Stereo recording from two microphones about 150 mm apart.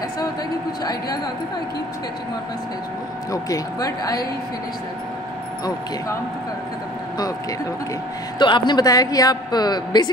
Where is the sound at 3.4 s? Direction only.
25° left (ahead or behind).